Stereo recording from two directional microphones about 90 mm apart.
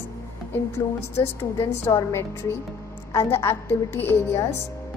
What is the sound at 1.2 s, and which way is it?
A woman's voice, 30° left (ahead or behind).